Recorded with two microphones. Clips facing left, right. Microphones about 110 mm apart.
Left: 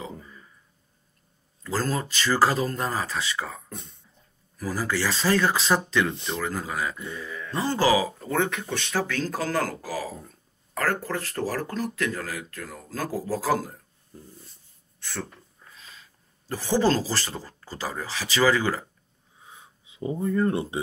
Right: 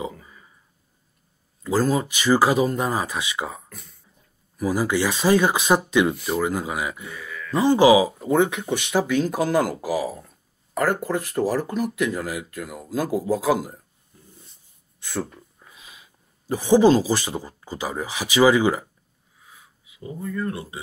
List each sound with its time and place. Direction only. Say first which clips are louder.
0.0 s a sound: right 5 dB; 15° right (ahead or behind)
1.6 s speech: right 6 dB; 15° right (ahead or behind)
3.6 s speech: left 5 dB; 25° left (ahead or behind)
4.6 s speech: right 6 dB; 15° right (ahead or behind)
7.2 s speech: even; 25° left (ahead or behind)
7.6 s speech: right 7 dB; 15° right (ahead or behind)
15.0 s speech: right 6 dB; 10° right (ahead or behind)
19.4 s a sound: left 2 dB; 25° left (ahead or behind)